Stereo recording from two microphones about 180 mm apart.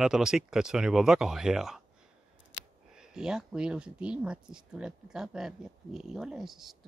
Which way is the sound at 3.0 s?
5° right (ahead or behind).